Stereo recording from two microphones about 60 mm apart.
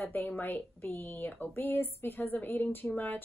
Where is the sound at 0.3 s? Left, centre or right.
Left.